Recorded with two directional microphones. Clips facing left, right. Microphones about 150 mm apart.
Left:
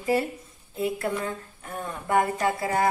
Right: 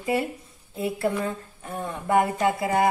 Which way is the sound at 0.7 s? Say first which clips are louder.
Right 2 dB; 30° right (ahead or behind).